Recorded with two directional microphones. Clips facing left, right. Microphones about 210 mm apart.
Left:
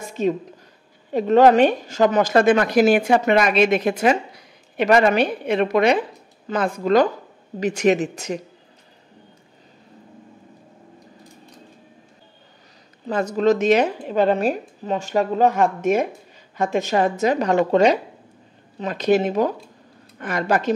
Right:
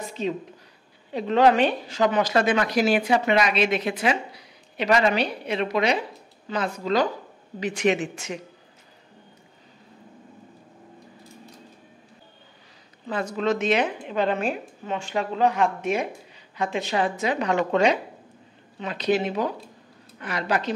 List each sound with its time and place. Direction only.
0.0 s a sound: 45° left (ahead or behind)
1.1 s a woman's voice: 45° left (ahead or behind)
13.0 s a woman's voice: 40° left (ahead or behind)